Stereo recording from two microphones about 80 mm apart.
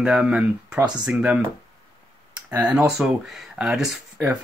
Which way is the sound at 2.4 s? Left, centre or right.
Centre.